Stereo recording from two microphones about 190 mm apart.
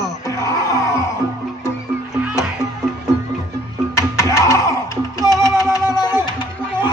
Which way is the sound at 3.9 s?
15° left (ahead or behind).